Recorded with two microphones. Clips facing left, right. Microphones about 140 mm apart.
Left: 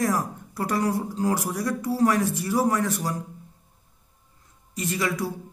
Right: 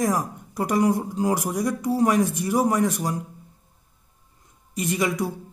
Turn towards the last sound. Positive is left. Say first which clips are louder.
# right 3 dB
turn(degrees=-15)  # may be behind; listen again after turning